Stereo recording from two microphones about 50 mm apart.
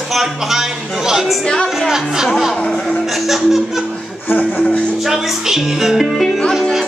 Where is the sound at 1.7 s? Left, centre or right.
Centre.